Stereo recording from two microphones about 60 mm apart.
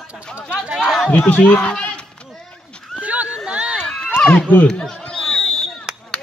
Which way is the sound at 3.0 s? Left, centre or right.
Right.